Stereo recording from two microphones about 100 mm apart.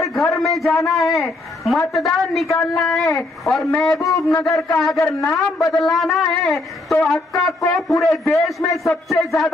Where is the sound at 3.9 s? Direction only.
35° left (ahead or behind).